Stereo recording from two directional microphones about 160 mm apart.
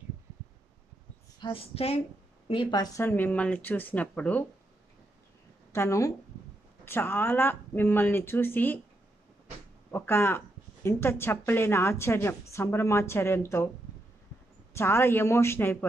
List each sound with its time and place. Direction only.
1.4 s speech: 35° left (ahead or behind); by 4.5 s 10° left (ahead or behind)
5.7 s a woman's voice: 15° left (ahead or behind)
9.8 s speech: 15° left (ahead or behind)
14.8 s speech: 15° left (ahead or behind)